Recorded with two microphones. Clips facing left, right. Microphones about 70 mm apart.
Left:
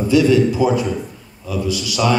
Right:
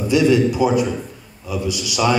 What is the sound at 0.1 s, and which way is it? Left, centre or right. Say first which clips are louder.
A man's voice: left 1 dB; right.